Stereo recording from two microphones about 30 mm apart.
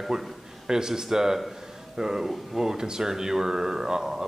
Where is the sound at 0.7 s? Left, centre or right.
Centre.